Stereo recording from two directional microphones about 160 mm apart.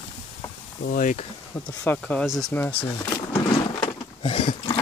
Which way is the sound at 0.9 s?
55° left (ahead or behind).